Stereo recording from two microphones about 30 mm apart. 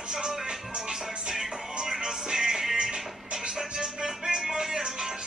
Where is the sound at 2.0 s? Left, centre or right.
Centre.